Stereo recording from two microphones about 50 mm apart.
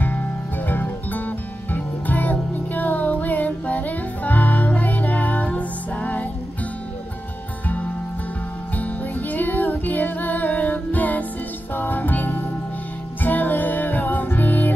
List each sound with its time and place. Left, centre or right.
0.0 s music: left
8.7 s music: left